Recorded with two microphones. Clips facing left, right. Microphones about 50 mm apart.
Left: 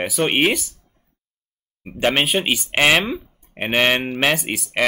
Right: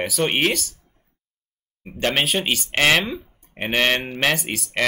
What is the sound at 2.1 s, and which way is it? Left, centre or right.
Speech, centre.